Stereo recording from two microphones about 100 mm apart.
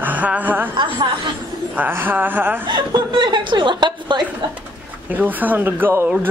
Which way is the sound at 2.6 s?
50° right (ahead or behind).